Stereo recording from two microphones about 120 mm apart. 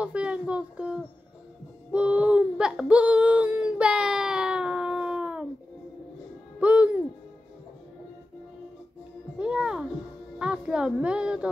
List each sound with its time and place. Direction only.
0.0 s speech: 10° right (ahead or behind)
1.9 s a sound: 10° right (ahead or behind)
6.6 s music: 10° right (ahead or behind)
9.4 s music: 5° right (ahead or behind)
10.4 s speech: 5° right (ahead or behind)